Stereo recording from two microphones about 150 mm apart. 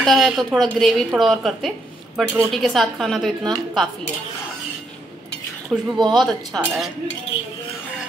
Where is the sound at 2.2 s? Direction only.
15° right (ahead or behind).